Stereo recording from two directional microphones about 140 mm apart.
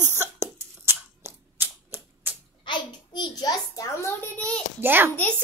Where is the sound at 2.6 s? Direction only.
30° left (ahead or behind).